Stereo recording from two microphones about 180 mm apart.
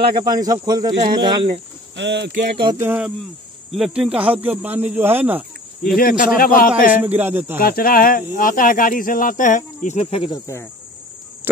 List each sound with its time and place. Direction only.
0.0 s speech: 25° right (ahead or behind)
2.0 s speech: 75° right (ahead or behind)
2.6 s speech: 20° right (ahead or behind)
3.7 s speech: centre (ahead or behind)
5.9 s speech: 55° left (ahead or behind)
7.1 s speech: 10° right (ahead or behind)
7.5 s speech: 55° left (ahead or behind); by 10.4 s 30° left (ahead or behind)
10.4 s speech: 15° left (ahead or behind)
11.4 s a sound: 10° right (ahead or behind)